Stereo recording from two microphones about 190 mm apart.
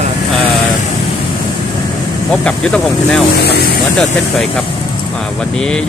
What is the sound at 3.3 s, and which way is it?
Speech, 60° left (ahead or behind).